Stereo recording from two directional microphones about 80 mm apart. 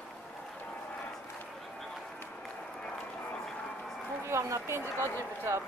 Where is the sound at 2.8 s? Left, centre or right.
Centre.